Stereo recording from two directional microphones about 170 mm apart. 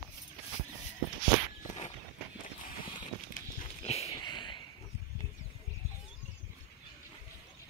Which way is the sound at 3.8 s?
40° left (ahead or behind).